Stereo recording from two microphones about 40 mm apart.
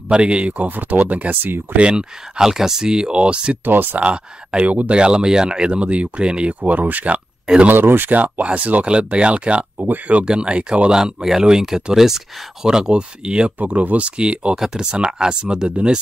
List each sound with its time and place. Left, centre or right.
0.1 s speech: right
0.7 s speech: right
1.3 s speech: right
1.8 s speech: right
3.6 s speech: right
4.0 s speech: right
4.6 s speech: right
4.9 s speech: right
6.6 s speech: right
7.6 s speech: right
8.1 s speech: right
8.8 s speech: right
10.2 s speech: right
13.7 s speech: right